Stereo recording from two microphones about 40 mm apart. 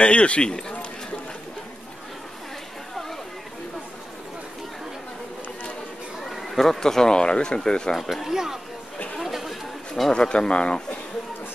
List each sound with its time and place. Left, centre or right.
0.0 s speech: left
6.5 s speech: centre
7.9 s speech: centre
9.2 s chatter: centre
10.1 s speech: left